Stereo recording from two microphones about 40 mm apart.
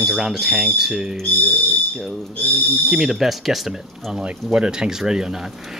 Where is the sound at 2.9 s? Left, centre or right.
Centre.